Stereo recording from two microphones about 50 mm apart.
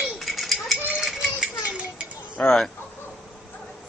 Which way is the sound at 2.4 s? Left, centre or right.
Left.